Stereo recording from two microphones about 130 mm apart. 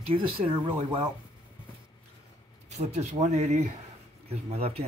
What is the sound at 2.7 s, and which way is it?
Speech, 65° right (ahead or behind).